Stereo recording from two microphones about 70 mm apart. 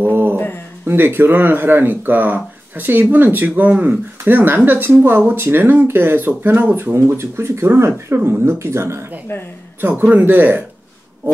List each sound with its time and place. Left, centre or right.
0.0 s a sound: right
0.8 s speech: right
9.3 s speech: left
9.8 s speech: right